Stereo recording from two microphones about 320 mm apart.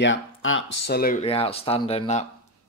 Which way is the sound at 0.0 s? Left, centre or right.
Left.